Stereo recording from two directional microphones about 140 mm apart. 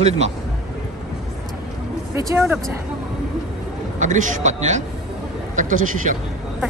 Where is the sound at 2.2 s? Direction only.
20° right (ahead or behind).